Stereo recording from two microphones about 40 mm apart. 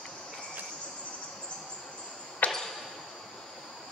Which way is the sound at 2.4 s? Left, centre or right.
Left.